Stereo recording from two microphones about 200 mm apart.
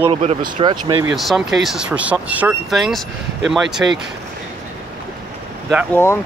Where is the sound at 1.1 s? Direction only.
Centre (ahead or behind).